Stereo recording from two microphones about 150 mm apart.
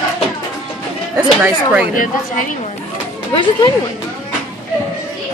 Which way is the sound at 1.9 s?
60° left (ahead or behind).